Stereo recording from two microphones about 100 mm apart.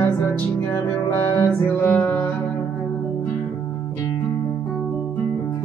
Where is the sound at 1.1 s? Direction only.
20° left (ahead or behind).